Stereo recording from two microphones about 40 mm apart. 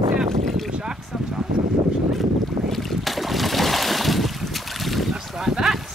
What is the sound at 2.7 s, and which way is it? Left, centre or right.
Boat, centre.